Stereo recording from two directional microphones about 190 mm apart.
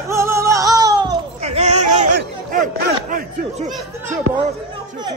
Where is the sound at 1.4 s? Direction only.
35° right (ahead or behind).